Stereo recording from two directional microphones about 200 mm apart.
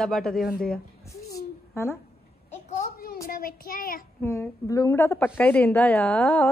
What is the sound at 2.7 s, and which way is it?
Child singing, 40° left (ahead or behind).